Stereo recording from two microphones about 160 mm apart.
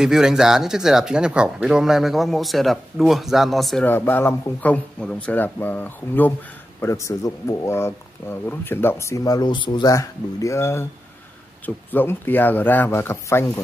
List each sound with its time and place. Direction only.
0.0 s speech: 5° right (ahead or behind)
3.8 s speech: 10° left (ahead or behind)